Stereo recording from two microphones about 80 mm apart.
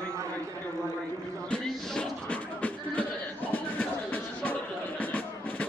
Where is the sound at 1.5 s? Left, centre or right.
Centre.